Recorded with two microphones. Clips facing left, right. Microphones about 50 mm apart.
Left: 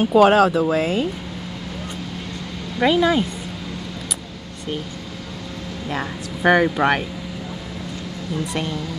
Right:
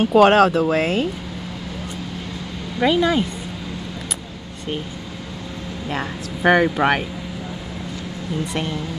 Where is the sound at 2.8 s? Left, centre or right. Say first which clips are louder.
Left 1 dB; centre.